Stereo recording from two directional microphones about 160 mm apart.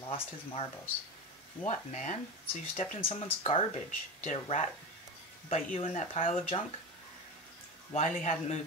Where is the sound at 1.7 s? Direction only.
50° left (ahead or behind).